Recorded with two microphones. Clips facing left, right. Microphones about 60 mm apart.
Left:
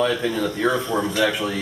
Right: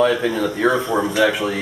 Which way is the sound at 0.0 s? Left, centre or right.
Centre.